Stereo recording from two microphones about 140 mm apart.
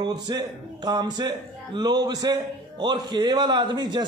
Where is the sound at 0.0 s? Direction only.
30° right (ahead or behind).